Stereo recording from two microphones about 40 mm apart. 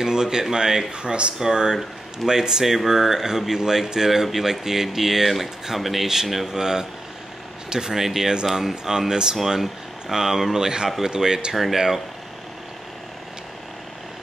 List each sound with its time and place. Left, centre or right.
0.0 s speech: centre
0.9 s speech: right
11.5 s speech: centre